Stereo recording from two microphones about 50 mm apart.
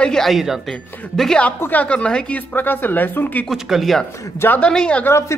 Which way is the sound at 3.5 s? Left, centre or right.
Centre.